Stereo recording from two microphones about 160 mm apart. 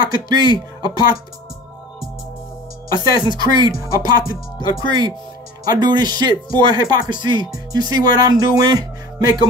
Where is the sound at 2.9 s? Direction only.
25° right (ahead or behind).